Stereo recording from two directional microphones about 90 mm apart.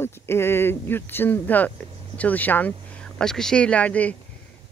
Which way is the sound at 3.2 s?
5° left (ahead or behind).